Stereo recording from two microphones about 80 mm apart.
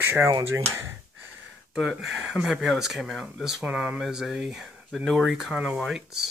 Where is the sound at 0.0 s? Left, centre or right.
Right.